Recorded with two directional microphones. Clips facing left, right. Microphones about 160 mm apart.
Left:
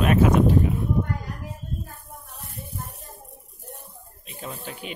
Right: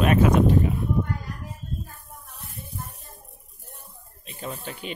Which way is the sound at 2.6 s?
70° left (ahead or behind).